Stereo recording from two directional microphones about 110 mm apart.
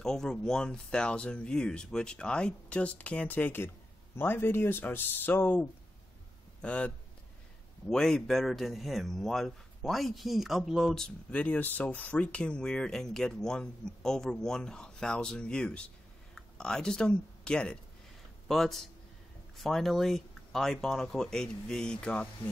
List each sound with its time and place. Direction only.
0.0 s speech: 5° left (ahead or behind)
7.9 s speech: 5° left (ahead or behind)